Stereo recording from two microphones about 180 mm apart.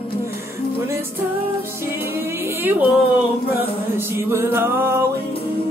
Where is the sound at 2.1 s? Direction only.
10° right (ahead or behind).